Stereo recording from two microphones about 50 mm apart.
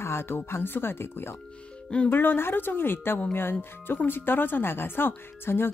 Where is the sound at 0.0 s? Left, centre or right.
Left.